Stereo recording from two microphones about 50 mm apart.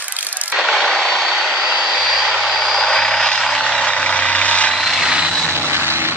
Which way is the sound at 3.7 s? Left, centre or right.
Left.